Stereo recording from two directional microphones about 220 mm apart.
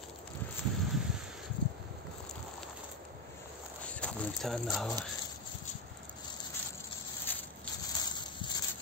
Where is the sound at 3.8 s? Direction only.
5° left (ahead or behind).